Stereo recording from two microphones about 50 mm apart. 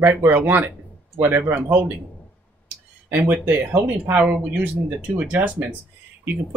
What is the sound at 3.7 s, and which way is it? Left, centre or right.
Speech, right.